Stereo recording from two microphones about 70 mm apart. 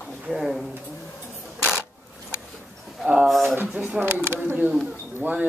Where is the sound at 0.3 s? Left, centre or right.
Centre.